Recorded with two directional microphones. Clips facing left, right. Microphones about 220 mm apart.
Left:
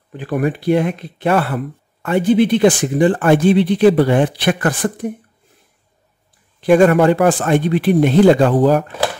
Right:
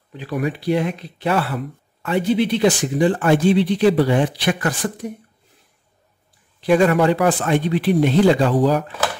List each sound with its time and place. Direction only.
0.1 s speech: 50° left (ahead or behind)
6.6 s speech: 50° left (ahead or behind)